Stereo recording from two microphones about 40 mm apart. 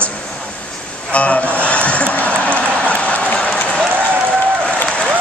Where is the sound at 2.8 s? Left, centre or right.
Left.